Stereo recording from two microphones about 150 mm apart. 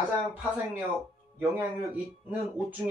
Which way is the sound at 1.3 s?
10° right (ahead or behind).